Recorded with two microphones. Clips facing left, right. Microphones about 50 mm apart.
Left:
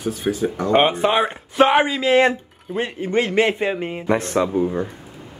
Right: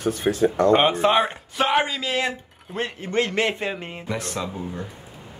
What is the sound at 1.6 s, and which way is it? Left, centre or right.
Speech, centre.